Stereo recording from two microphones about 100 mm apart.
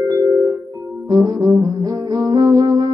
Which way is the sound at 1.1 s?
35° right (ahead or behind).